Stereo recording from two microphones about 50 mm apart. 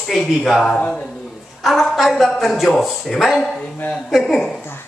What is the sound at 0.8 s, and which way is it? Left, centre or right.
Speech, centre.